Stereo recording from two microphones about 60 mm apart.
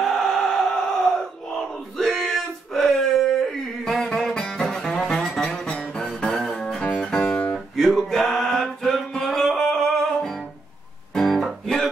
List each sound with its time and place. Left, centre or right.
0.0 s a sound: centre
2.0 s a sound: centre
5.1 s music: centre
5.7 s music: left
5.9 s music: centre
7.5 s music: centre